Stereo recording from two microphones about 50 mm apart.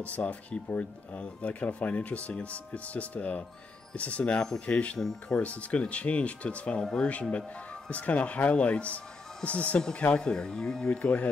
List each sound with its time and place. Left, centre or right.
0.0 s speech: left
4.4 s speech: centre
4.6 s speech: left
10.1 s speech: centre
11.0 s speech: left